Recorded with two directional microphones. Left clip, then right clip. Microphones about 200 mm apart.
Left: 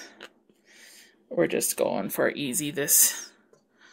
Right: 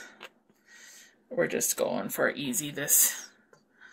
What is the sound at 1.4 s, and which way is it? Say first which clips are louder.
Speech: left 3 dB; 50° left (ahead or behind).